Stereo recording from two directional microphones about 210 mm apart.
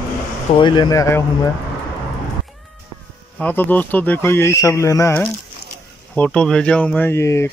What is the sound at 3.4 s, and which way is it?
Speech, 10° left (ahead or behind).